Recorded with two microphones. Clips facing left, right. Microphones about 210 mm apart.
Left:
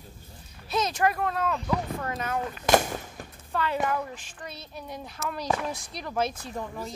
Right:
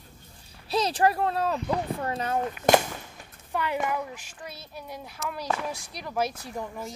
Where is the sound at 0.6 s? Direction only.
30° right (ahead or behind).